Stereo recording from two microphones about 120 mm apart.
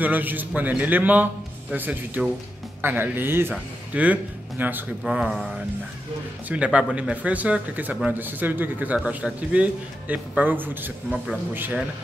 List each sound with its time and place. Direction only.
0.0 s speech: 15° right (ahead or behind)
5.0 s speech: 5° right (ahead or behind)